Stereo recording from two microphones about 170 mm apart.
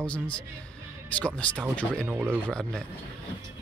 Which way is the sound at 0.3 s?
5° left (ahead or behind).